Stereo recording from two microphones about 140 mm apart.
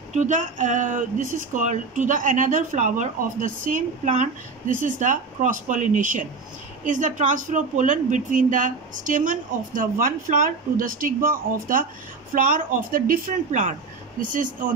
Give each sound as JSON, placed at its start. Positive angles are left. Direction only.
{"t": 0.1, "sound": "speech", "side_deg": -60}